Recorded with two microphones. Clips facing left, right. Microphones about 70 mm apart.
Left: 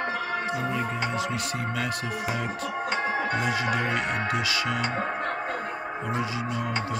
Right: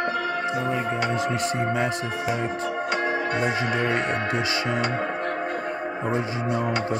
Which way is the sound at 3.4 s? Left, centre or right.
Right.